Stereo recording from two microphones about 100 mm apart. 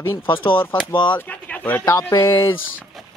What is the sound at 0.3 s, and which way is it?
Speech, 60° left (ahead or behind).